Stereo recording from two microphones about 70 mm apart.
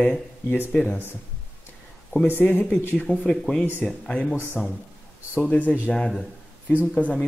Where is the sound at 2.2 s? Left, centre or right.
Left.